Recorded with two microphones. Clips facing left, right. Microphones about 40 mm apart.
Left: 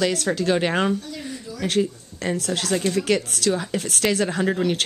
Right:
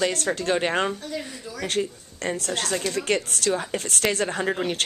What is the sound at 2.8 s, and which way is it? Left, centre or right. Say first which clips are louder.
Speech: left 7 dB; left.